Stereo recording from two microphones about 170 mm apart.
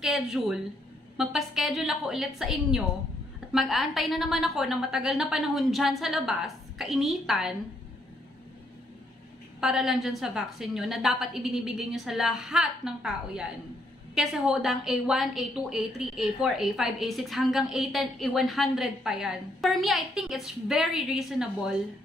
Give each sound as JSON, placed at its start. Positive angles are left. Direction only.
{"t": 0.0, "sound": "a woman's voice", "side_deg": -5}
{"t": 9.6, "sound": "a woman's voice", "side_deg": 0}